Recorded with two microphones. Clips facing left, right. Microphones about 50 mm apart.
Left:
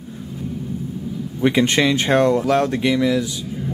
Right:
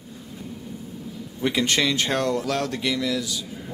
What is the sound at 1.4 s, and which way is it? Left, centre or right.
Speech, left.